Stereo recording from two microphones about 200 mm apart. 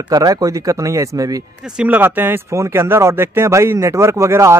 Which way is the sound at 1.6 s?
5° right (ahead or behind).